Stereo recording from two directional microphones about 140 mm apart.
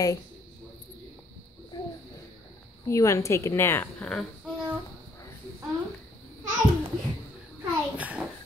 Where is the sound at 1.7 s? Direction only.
35° left (ahead or behind).